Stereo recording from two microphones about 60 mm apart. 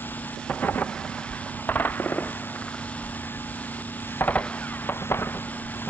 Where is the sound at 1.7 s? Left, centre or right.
Left.